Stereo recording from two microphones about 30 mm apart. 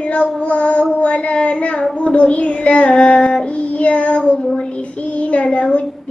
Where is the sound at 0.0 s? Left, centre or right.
Left.